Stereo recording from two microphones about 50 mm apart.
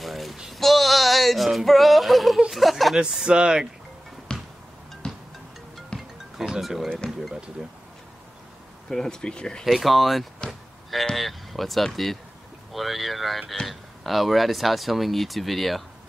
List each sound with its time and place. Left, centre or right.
0.0 s a sound: centre
2.5 s snicker: centre
3.3 s speech: centre
4.3 s music: centre
5.9 s music: centre
8.8 s speech: centre
9.7 s speech: centre
10.4 s speech: centre
11.1 s speech: centre